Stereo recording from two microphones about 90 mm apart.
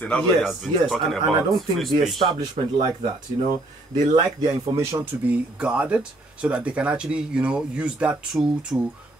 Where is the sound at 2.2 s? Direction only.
55° right (ahead or behind).